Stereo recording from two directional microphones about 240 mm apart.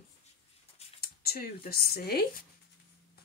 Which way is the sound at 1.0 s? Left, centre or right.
Left.